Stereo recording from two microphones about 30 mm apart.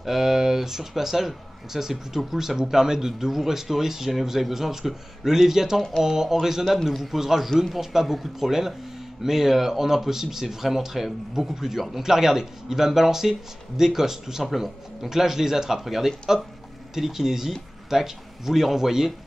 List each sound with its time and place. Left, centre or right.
0.0 s speech: centre